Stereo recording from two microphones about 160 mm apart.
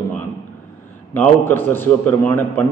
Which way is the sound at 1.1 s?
10° left (ahead or behind).